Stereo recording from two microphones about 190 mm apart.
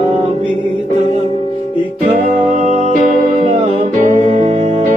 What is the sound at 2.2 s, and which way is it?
Music, 45° right (ahead or behind).